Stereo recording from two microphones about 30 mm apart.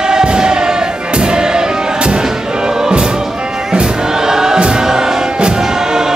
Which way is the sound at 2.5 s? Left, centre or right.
Right.